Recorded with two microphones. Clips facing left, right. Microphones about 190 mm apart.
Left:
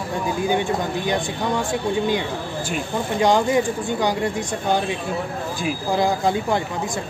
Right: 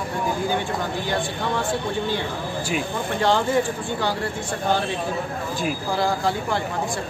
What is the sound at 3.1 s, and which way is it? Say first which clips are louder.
Speech: left 3 dB; 15° left (ahead or behind).